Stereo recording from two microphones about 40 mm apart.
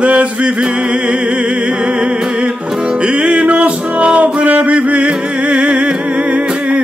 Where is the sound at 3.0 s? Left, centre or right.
Right.